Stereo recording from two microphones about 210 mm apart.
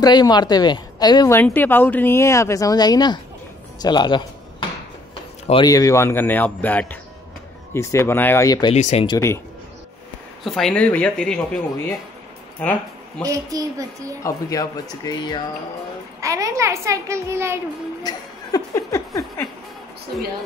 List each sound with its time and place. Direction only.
0.0 s speech: 20° left (ahead or behind)
8.7 s speech: 30° left (ahead or behind)
10.4 s speech: centre (ahead or behind)
13.2 s a woman's voice: 15° right (ahead or behind)
14.2 s speech: 15° left (ahead or behind)
16.2 s a woman's voice: 15° right (ahead or behind)
18.0 s speech: 15° left (ahead or behind)